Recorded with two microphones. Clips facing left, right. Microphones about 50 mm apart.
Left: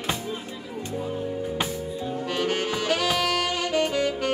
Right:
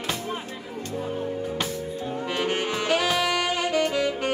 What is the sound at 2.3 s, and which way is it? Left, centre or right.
Saxophone, centre.